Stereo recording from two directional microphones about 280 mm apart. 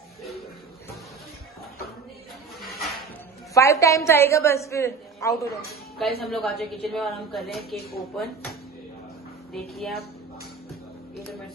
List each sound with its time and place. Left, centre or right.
2.6 s music: centre
3.5 s a woman's voice: centre
7.7 s speech: left
8.2 s a woman's voice: centre